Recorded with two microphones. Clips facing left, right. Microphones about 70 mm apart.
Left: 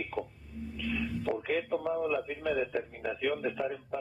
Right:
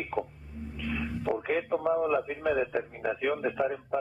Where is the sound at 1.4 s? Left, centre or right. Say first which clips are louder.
Right 3 dB; right.